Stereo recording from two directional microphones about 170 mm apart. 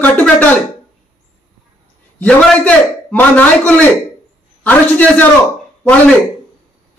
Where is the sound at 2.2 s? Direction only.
10° left (ahead or behind).